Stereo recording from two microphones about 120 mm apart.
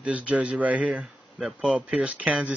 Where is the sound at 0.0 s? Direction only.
10° right (ahead or behind).